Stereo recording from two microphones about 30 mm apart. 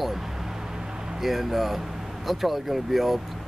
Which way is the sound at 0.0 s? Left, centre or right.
Centre.